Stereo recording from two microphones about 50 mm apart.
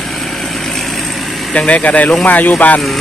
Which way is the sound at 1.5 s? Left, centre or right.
Left.